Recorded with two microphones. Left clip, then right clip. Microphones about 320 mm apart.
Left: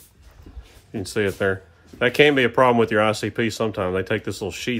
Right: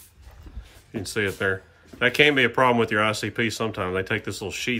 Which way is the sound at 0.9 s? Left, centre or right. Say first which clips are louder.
Left 3 dB; centre.